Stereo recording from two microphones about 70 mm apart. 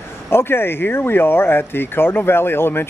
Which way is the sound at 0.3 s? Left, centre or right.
Left.